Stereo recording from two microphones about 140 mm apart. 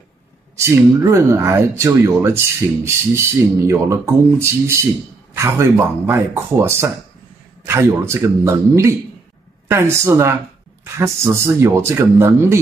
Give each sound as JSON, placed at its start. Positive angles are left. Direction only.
{"t": 0.6, "sound": "speech", "side_deg": -20}